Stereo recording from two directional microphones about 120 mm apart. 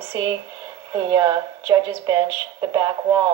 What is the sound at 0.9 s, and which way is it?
A woman's voice, 40° right (ahead or behind).